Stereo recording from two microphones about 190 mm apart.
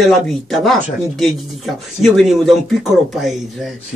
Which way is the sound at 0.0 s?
Centre (ahead or behind).